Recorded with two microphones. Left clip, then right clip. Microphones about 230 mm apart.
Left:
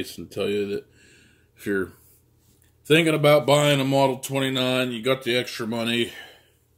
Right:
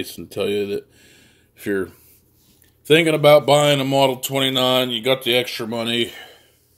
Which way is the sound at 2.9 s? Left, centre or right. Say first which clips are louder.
Right 5 dB; centre.